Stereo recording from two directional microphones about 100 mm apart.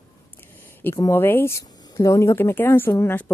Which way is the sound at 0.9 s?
25° left (ahead or behind).